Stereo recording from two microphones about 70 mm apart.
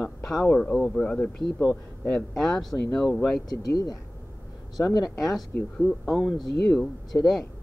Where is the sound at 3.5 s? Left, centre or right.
Left.